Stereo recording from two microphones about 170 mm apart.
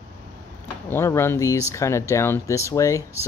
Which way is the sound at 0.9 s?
15° left (ahead or behind).